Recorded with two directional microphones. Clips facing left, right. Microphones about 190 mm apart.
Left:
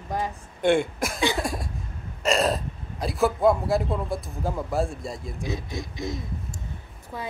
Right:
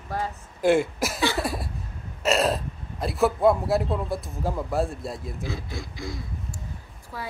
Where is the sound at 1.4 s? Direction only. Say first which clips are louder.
Right 1 dB; 5° right (ahead or behind).